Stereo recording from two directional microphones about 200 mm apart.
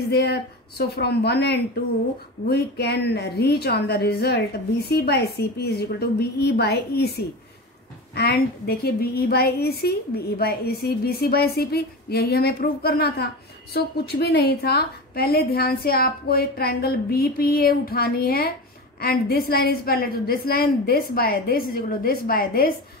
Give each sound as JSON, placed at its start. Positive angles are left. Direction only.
{"t": 0.1, "sound": "a woman's voice", "side_deg": 55}